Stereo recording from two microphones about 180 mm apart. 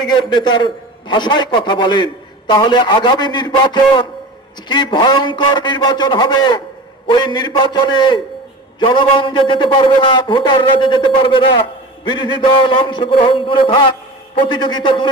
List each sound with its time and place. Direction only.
0.0 s a man's voice: 25° left (ahead or behind)